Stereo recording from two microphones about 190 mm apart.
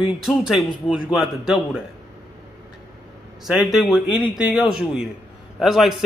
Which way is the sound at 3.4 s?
Centre (ahead or behind).